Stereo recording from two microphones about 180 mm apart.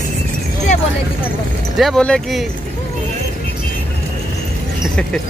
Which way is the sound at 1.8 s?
5° left (ahead or behind).